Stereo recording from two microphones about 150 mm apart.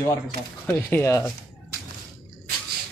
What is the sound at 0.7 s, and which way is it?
Speech, 10° left (ahead or behind).